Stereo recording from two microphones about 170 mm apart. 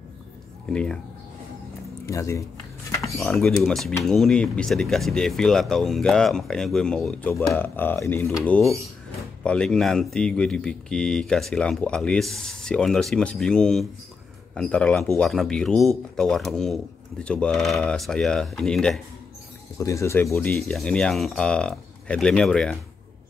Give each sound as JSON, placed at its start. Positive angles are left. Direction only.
{"t": 0.7, "sound": "speech", "side_deg": 5}
{"t": 2.0, "sound": "speech", "side_deg": 15}
{"t": 3.0, "sound": "speech", "side_deg": 0}
{"t": 8.5, "sound": "speech", "side_deg": 0}
{"t": 19.8, "sound": "speech", "side_deg": 20}
{"t": 20.6, "sound": "speech", "side_deg": 5}